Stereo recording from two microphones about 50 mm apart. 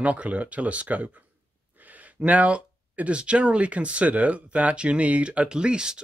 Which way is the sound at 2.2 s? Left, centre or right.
Right.